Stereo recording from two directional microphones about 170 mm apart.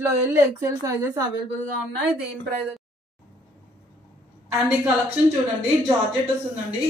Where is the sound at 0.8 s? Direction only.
20° right (ahead or behind).